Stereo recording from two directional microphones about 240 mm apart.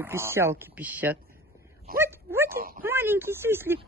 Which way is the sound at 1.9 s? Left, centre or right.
Centre.